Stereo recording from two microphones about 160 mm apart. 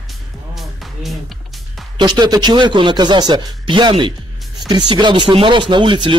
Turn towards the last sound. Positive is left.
turn(degrees=-30)  # may be behind; listen again after turning